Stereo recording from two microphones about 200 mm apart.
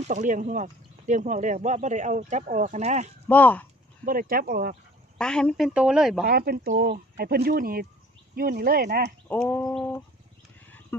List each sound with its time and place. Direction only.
0.1 s speech: 40° right (ahead or behind)
3.3 s speech: 10° left (ahead or behind)
4.0 s speech: 45° right (ahead or behind)
5.1 s a woman's voice: 5° left (ahead or behind)
6.2 s speech: 50° right (ahead or behind)
9.3 s speech: 5° left (ahead or behind)
10.9 s speech: 10° left (ahead or behind)